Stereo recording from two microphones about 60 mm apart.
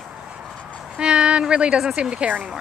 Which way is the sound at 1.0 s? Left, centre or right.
Centre.